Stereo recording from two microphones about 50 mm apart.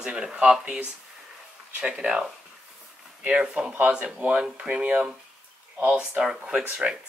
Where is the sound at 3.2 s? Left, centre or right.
Right.